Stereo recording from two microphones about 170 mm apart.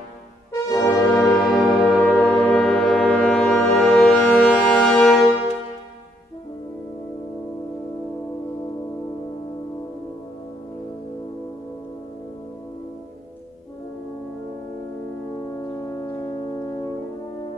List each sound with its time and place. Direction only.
0.5 s brass instrument: 20° left (ahead or behind)
1.3 s brass instrument: centre (ahead or behind)
15.5 s music: 20° left (ahead or behind)